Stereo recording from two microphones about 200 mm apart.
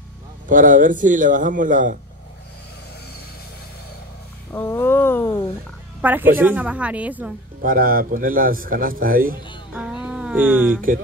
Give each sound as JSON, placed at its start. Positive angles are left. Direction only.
{"t": 0.5, "sound": "a man's voice", "side_deg": -40}
{"t": 4.5, "sound": "speech", "side_deg": 10}
{"t": 5.9, "sound": "a woman's voice", "side_deg": -10}
{"t": 7.6, "sound": "a man's voice", "side_deg": -45}
{"t": 9.8, "sound": "a sound", "side_deg": -5}